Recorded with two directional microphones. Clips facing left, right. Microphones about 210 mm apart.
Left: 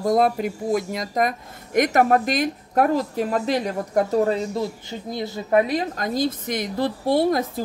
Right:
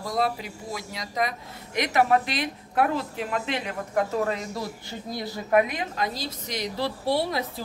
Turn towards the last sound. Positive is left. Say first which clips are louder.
# left 6 dB
turn(degrees=45)  # may be behind; listen again after turning